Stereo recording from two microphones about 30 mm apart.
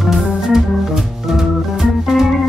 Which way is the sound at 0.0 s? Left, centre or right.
Centre.